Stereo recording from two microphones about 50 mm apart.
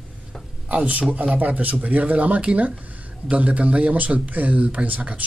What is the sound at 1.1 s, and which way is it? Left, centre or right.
Speech, right.